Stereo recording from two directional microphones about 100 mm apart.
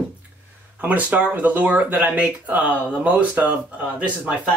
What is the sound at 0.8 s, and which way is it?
Speech, 15° right (ahead or behind).